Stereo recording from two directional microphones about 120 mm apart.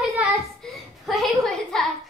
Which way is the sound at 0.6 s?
Centre (ahead or behind).